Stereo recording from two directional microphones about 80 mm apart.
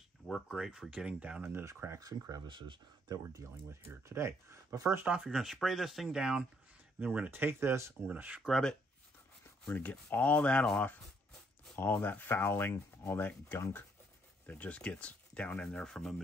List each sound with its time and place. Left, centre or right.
0.5 s speech: centre
1.4 s speech: right
2.0 s speech: right
2.4 s speech: right
3.8 s speech: right
5.2 s speech: centre
7.0 s speech: centre
8.1 s speech: centre
8.4 s speech: centre
9.7 s speech: centre
11.7 s speech: left; by 16.2 s centre